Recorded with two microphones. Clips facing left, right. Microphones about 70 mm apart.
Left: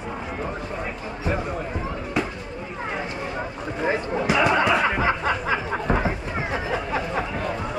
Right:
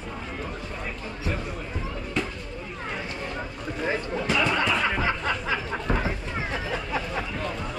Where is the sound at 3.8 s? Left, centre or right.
Left.